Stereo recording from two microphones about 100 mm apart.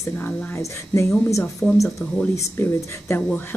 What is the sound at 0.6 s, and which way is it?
Speech, 30° left (ahead or behind).